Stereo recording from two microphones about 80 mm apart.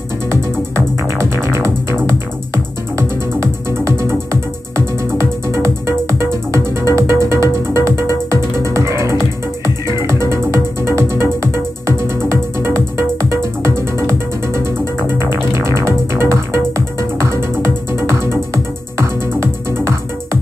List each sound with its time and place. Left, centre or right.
1.3 s music: right